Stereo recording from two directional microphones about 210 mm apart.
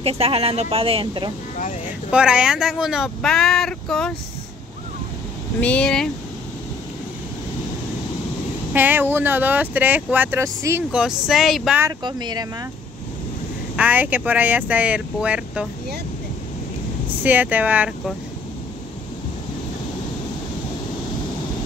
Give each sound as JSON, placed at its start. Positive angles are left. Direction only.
{"t": 0.0, "sound": "speech", "side_deg": -30}
{"t": 2.0, "sound": "speech", "side_deg": -5}
{"t": 5.6, "sound": "speech", "side_deg": 5}
{"t": 8.7, "sound": "speech", "side_deg": -10}
{"t": 11.8, "sound": "speech", "side_deg": -20}
{"t": 13.7, "sound": "speech", "side_deg": -10}
{"t": 17.2, "sound": "speech", "side_deg": -10}